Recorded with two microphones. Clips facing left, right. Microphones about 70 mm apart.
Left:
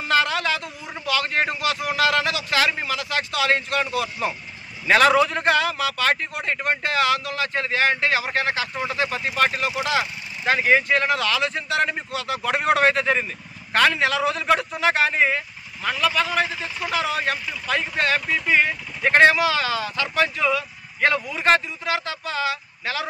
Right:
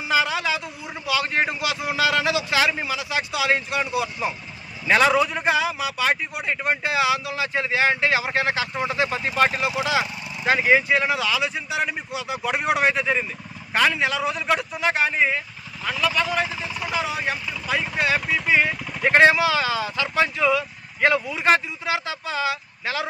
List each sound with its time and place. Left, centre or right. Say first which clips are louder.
0.1 s a man's voice: left 1 dB; centre